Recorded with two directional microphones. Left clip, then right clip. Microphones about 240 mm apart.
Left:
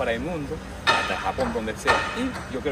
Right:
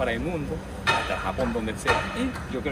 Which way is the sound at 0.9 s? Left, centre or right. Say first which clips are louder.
Left 3 dB; left.